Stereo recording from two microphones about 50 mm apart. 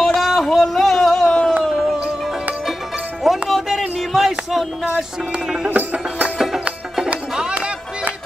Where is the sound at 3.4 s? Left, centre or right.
Centre.